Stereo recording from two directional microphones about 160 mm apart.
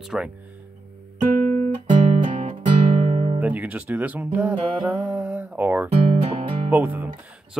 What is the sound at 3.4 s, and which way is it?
Speech, 10° right (ahead or behind).